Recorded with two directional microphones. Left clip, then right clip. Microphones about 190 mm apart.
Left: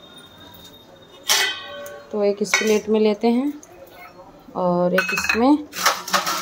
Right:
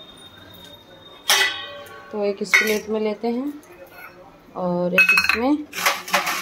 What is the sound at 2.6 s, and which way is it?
Cutlery, 20° left (ahead or behind).